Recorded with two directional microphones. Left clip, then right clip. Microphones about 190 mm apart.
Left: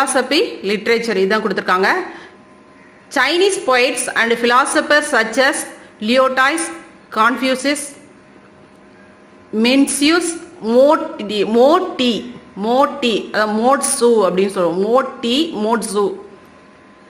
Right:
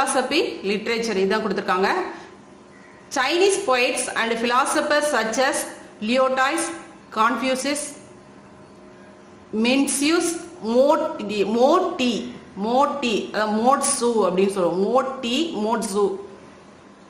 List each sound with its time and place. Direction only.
0.0 s a woman's voice: 35° left (ahead or behind)
3.1 s a woman's voice: 35° left (ahead or behind)
9.6 s a woman's voice: 30° left (ahead or behind)